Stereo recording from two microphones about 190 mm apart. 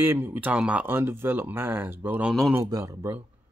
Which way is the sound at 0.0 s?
10° right (ahead or behind).